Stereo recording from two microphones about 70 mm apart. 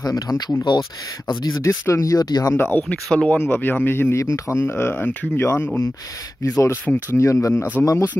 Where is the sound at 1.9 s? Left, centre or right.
Left.